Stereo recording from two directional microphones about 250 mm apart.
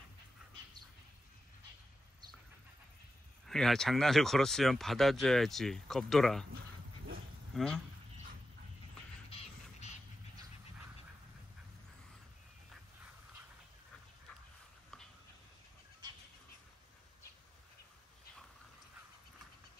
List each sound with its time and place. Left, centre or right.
3.4 s speech: centre
7.5 s speech: centre
9.3 s a sound: left